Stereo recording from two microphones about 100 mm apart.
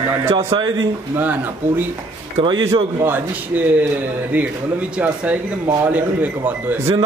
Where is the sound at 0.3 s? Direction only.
75° right (ahead or behind).